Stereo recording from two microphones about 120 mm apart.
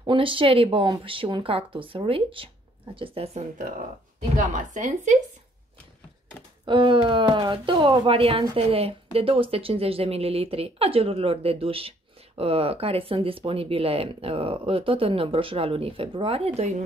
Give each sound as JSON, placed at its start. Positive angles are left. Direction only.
{"t": 0.0, "sound": "speech", "side_deg": -45}
{"t": 4.4, "sound": "a woman's voice", "side_deg": -90}
{"t": 6.6, "sound": "speech", "side_deg": -45}